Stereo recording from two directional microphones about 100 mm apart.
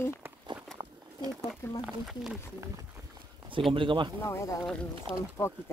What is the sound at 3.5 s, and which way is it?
Speech, 60° right (ahead or behind).